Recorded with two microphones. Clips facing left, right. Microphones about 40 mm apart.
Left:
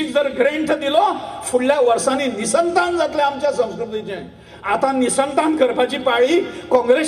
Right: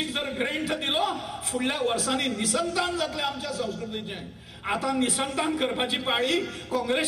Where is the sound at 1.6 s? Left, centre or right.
Left.